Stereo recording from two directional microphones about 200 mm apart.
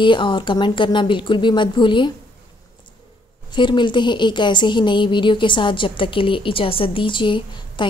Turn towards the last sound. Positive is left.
turn(degrees=25)  # may be behind; listen again after turning